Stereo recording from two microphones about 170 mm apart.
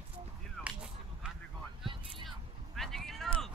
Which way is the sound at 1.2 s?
5° right (ahead or behind).